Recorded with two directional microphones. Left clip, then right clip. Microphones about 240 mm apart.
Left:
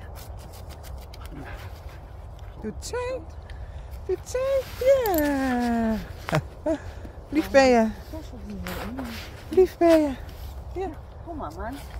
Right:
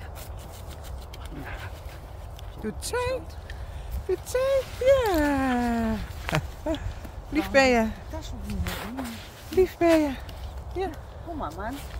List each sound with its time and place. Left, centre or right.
2.6 s speech: centre
8.6 s a sound: centre
9.6 s speech: centre